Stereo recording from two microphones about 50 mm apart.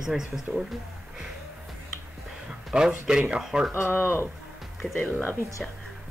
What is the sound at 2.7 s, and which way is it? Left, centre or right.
Speech, right.